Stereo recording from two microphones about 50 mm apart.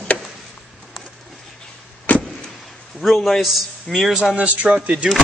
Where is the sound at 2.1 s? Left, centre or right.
Left.